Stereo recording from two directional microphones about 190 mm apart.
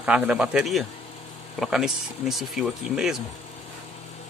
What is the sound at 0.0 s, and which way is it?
Speech, 5° right (ahead or behind).